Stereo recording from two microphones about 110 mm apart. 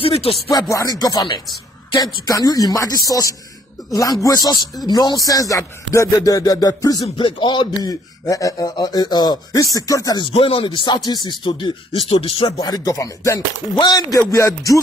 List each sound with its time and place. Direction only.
0.0 s speech: 60° left (ahead or behind)
0.5 s speech: 30° left (ahead or behind)
7.2 s speech: 50° left (ahead or behind); by 10.2 s 35° left (ahead or behind)
10.2 s speech: 55° left (ahead or behind)
11.1 s speech: 45° left (ahead or behind)
12.4 s speech: 40° left (ahead or behind)